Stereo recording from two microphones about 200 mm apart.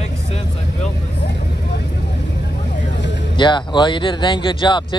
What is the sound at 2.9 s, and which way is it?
Vehicle, 60° left (ahead or behind).